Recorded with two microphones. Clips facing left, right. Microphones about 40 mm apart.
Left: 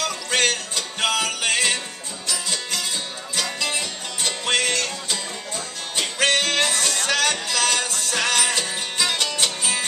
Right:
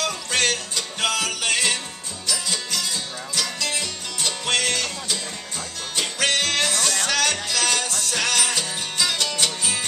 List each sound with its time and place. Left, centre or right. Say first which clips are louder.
0.0 s music: left 1 dB; centre